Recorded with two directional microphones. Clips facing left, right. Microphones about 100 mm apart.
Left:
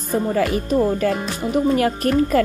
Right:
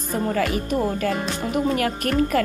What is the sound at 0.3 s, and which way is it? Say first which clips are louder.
Speech: left 2 dB; 35° left (ahead or behind).